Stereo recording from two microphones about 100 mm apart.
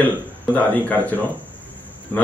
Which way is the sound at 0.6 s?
15° left (ahead or behind).